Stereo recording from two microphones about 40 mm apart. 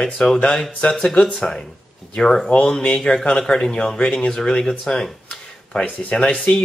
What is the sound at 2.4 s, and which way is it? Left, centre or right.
Speech, left.